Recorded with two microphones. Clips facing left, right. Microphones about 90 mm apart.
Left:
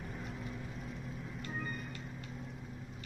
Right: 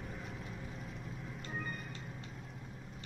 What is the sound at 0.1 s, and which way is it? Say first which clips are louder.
Music: left 2 dB; centre (ahead or behind).